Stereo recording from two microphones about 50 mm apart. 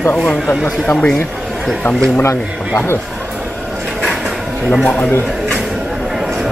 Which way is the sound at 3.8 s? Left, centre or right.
Centre.